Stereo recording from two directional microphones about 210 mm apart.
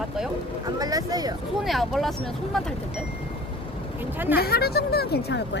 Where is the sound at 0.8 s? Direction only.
20° right (ahead or behind).